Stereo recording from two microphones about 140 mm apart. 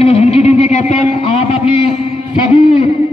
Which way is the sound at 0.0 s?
45° left (ahead or behind).